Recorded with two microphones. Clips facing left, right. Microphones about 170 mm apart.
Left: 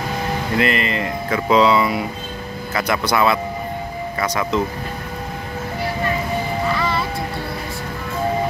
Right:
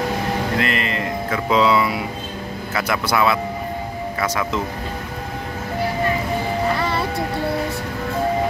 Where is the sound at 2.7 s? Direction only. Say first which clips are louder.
Left 2 dB; 5° right (ahead or behind).